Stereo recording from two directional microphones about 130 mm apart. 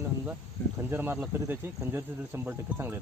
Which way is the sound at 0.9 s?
15° right (ahead or behind).